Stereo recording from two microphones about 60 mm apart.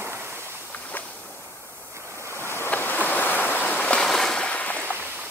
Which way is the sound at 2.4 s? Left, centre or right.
Left.